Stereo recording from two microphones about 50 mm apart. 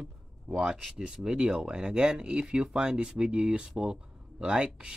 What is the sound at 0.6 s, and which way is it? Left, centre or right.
Speech, centre.